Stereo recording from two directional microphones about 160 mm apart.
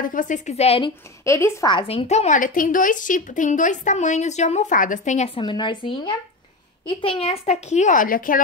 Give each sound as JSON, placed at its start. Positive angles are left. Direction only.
{"t": 0.0, "sound": "a woman's voice", "side_deg": 55}
{"t": 1.2, "sound": "speech", "side_deg": 20}
{"t": 1.7, "sound": "a woman's voice", "side_deg": 35}
{"t": 5.4, "sound": "a woman's voice", "side_deg": 30}